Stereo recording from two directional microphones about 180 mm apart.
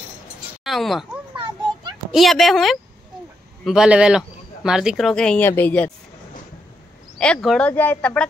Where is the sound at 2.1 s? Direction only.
Centre (ahead or behind).